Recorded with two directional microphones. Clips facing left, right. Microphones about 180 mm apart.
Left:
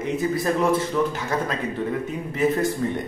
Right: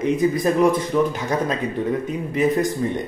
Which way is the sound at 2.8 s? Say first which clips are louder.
Right 2 dB; 15° right (ahead or behind).